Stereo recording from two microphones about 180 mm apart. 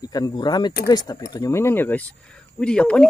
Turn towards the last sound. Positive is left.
turn(degrees=5)  # may be behind; listen again after turning